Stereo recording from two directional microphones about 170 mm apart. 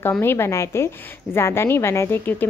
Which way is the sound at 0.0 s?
15° left (ahead or behind).